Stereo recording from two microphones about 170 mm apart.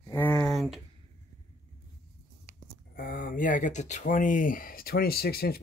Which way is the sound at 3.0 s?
55° left (ahead or behind).